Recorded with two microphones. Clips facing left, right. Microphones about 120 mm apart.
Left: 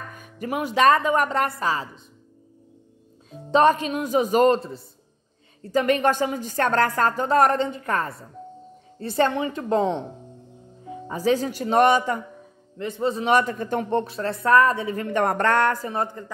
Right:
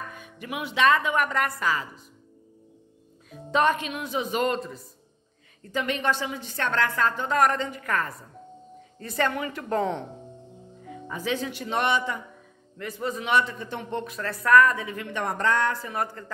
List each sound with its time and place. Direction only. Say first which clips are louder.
0.1 s speech: left 6 dB; 40° left (ahead or behind)
3.3 s a woman's voice: left 5 dB; 35° left (ahead or behind)
10.9 s speech: left 8 dB; 35° left (ahead or behind)
12.7 s speech: left 6 dB; 25° left (ahead or behind); by 15.8 s 60° left (ahead or behind)
15.8 s a woman's voice: left 3 dB; 25° left (ahead or behind)